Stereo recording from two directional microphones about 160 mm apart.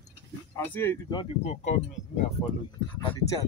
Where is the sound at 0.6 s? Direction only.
15° left (ahead or behind).